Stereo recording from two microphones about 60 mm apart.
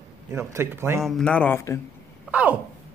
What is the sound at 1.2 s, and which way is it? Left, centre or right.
Speech, left.